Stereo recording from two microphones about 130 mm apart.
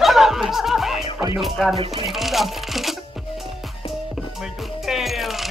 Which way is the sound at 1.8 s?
45° right (ahead or behind).